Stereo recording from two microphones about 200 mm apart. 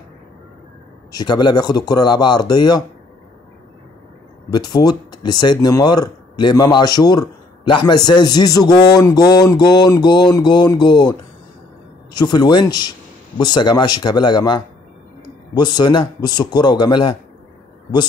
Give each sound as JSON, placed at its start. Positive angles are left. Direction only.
{"t": 1.1, "sound": "speech", "side_deg": 20}
{"t": 4.5, "sound": "speech", "side_deg": 20}